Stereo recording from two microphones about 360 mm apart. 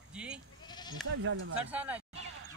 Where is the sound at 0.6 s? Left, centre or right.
Centre.